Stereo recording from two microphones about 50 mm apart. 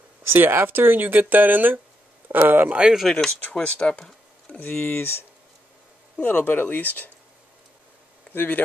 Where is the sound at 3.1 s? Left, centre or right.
Centre.